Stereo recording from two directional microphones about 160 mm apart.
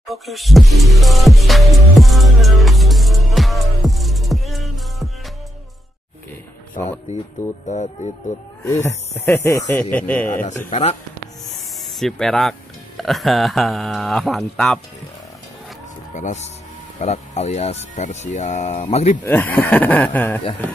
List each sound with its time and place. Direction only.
0.1 s music: centre (ahead or behind)
7.6 s speech: 45° left (ahead or behind)
8.6 s speech: 15° left (ahead or behind)
10.7 s speech: 40° left (ahead or behind)
11.8 s speech: centre (ahead or behind)
16.2 s speech: 45° left (ahead or behind)
19.2 s speech: 10° left (ahead or behind)